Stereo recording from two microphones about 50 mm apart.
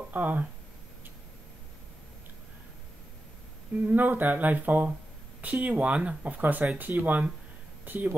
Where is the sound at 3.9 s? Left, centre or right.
Right.